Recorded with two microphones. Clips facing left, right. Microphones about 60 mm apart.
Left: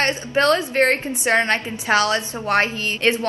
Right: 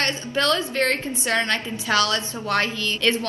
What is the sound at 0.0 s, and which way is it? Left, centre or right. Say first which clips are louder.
A woman's voice: left 5 dB; left.